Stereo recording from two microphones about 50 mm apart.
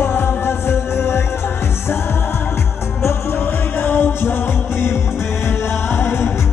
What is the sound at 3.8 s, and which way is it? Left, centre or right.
Music, left.